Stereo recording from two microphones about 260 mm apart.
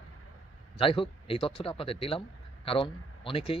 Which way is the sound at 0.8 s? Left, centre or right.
Left.